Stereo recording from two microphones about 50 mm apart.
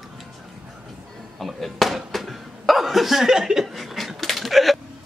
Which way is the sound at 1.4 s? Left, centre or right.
Centre.